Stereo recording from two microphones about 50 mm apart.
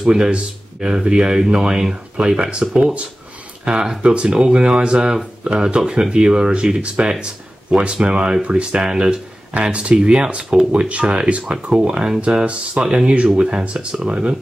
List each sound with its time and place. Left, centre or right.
0.0 s speech: centre
9.5 s speech: right